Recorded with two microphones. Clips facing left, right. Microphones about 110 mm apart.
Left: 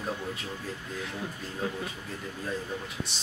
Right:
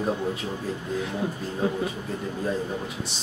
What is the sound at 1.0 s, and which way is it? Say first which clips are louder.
Speech: right 8 dB; 15° right (ahead or behind).